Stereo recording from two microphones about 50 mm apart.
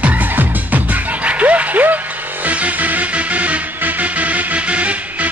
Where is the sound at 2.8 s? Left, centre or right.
Right.